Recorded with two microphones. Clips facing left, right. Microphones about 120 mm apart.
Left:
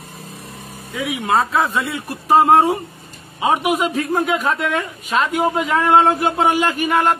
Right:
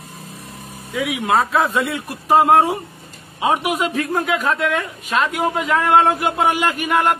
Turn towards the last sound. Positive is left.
turn(degrees=-5)  # may be behind; listen again after turning